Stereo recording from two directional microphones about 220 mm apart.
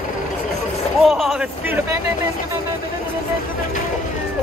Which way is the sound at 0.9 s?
Centre (ahead or behind).